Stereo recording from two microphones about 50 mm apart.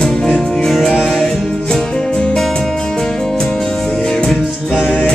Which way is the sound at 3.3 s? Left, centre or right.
Centre.